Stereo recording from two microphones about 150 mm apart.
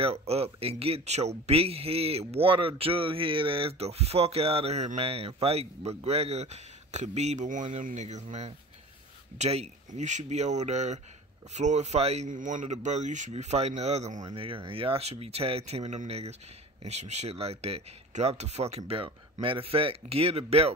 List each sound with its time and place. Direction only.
0.0 s speech: 40° right (ahead or behind)
14.2 s speech: 35° right (ahead or behind)